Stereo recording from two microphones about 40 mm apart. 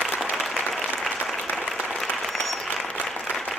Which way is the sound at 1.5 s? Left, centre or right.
Left.